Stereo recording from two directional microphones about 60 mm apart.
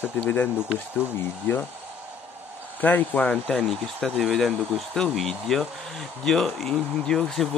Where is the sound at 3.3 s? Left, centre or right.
Centre.